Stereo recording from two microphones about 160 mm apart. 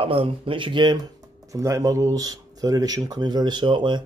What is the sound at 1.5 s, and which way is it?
Speech, 20° right (ahead or behind).